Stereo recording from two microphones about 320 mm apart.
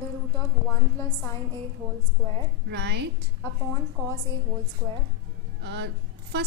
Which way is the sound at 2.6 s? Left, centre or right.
Right.